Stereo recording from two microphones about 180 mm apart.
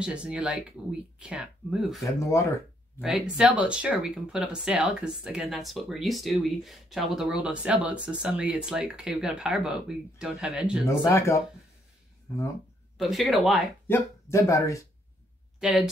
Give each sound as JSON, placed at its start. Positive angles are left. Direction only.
{"t": 0.0, "sound": "speech", "side_deg": -5}
{"t": 2.0, "sound": "speech", "side_deg": 15}
{"t": 3.0, "sound": "speech", "side_deg": -5}
{"t": 10.9, "sound": "speech", "side_deg": 15}
{"t": 12.9, "sound": "speech", "side_deg": 0}
{"t": 13.8, "sound": "speech", "side_deg": 15}
{"t": 15.6, "sound": "speech", "side_deg": -5}